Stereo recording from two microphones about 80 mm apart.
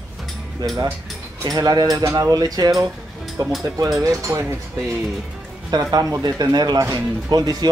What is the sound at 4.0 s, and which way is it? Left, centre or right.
Speech, right.